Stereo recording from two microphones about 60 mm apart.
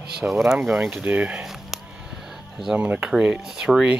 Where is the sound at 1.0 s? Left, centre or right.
Right.